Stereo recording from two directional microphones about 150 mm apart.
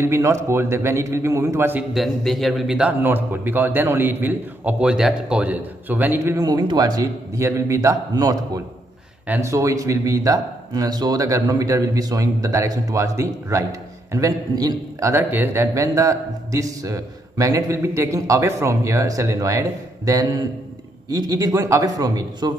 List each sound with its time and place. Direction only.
0.0 s a man's voice: 20° right (ahead or behind)
2.0 s a man's voice: centre (ahead or behind); by 22.5 s 25° right (ahead or behind)